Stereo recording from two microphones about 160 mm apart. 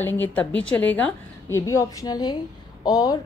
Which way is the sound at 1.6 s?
20° left (ahead or behind).